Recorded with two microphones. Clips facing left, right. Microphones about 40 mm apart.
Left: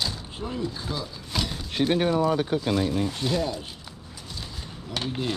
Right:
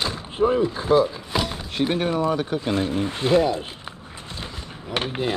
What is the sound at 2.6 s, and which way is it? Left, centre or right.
Speech, right.